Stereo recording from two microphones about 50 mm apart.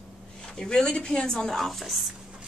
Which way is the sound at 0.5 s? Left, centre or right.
Centre.